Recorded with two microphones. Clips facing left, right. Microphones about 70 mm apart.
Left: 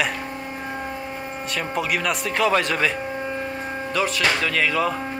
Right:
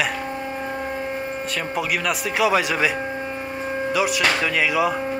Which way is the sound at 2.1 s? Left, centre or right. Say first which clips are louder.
Right 1 dB; centre.